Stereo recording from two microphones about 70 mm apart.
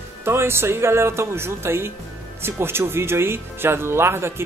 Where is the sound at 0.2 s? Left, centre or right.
Right.